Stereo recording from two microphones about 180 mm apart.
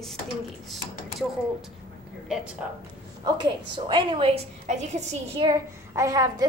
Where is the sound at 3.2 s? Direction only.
25° right (ahead or behind); by 5.4 s 40° right (ahead or behind).